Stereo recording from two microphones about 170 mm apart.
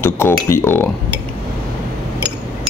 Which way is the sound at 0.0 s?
15° left (ahead or behind).